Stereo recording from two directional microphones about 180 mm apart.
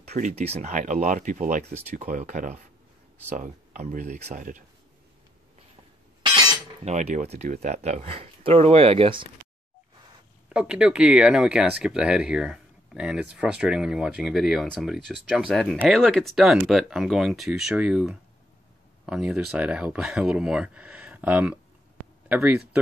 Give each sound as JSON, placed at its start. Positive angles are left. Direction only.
{"t": 0.1, "sound": "speech", "side_deg": -40}
{"t": 6.8, "sound": "speech", "side_deg": -40}
{"t": 10.5, "sound": "speech", "side_deg": -5}